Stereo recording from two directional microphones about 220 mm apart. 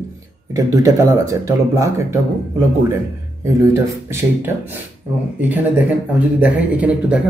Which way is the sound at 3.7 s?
10° right (ahead or behind).